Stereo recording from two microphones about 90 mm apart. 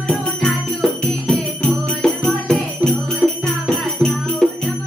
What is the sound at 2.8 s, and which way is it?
Jingle bell, 15° right (ahead or behind).